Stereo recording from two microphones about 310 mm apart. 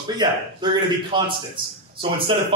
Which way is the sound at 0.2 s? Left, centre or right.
Centre.